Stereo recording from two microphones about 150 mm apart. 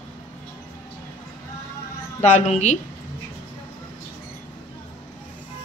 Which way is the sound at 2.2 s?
50° left (ahead or behind).